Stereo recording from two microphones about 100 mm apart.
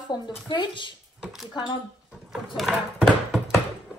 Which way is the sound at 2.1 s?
Centre (ahead or behind).